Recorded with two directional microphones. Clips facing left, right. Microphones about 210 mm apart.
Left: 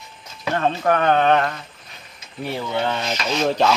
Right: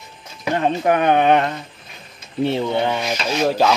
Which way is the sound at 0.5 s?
15° right (ahead or behind).